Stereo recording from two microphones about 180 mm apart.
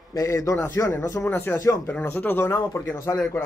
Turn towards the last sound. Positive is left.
turn(degrees=15)  # may be behind; listen again after turning